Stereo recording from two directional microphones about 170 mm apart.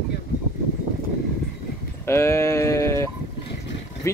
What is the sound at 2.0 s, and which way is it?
Sheep, 15° left (ahead or behind).